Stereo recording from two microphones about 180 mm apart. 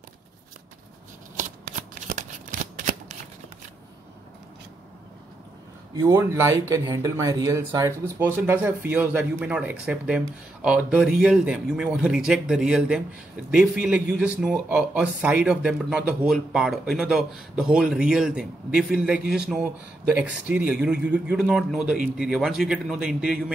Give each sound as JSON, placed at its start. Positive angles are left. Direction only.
{"t": 2.0, "sound": "shuffling cards", "side_deg": -45}
{"t": 5.9, "sound": "speech", "side_deg": -15}